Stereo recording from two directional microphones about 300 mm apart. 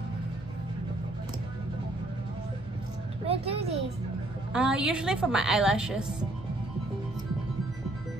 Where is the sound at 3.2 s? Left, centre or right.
Centre.